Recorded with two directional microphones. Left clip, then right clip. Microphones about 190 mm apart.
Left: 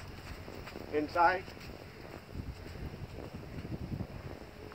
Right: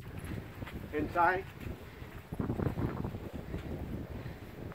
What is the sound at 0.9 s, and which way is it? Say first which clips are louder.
Speech: left 1 dB; 40° left (ahead or behind).